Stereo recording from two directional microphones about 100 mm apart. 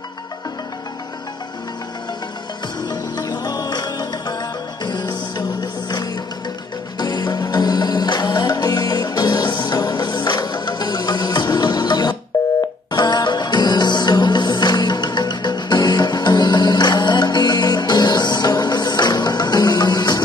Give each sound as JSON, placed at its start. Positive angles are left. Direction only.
{"t": 2.9, "sound": "music", "side_deg": 40}
{"t": 5.6, "sound": "music", "side_deg": 45}